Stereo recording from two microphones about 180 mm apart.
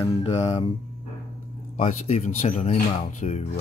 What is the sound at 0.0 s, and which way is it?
Speech, 35° left (ahead or behind).